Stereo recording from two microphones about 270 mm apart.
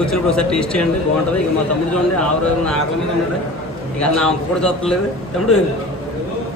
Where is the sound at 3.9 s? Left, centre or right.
Centre.